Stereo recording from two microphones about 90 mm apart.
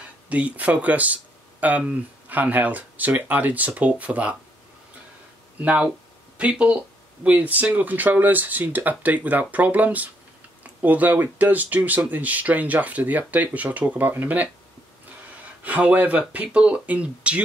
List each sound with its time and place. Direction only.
0.3 s speech: 15° right (ahead or behind)
5.6 s speech: 15° right (ahead or behind)
15.6 s speech: 15° right (ahead or behind)